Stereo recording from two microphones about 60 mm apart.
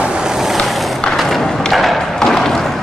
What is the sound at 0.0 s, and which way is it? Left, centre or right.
Vehicle, centre.